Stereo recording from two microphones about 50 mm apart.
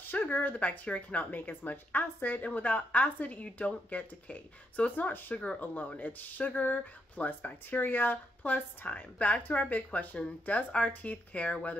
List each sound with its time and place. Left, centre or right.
0.0 s speech: left
1.3 s speech: left
5.3 s speech: left